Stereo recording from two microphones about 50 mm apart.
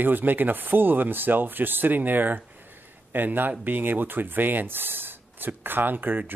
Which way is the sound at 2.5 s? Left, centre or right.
Right.